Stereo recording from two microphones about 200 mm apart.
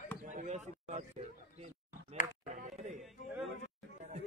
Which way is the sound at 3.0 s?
Centre (ahead or behind).